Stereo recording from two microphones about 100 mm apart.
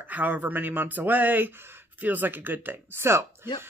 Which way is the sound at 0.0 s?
15° right (ahead or behind).